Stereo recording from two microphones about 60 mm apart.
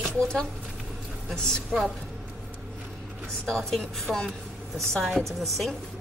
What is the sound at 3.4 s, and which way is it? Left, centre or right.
A woman's voice, centre.